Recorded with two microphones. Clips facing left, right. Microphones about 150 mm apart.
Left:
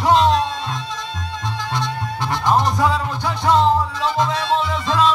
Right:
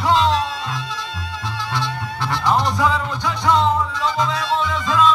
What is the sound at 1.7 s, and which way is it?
Music, 20° left (ahead or behind).